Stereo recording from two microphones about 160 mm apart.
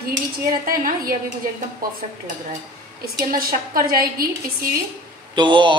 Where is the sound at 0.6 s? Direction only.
60° right (ahead or behind).